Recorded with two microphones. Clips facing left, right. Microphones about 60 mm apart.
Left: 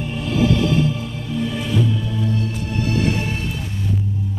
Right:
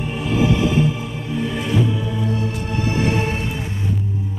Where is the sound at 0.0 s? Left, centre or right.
Centre.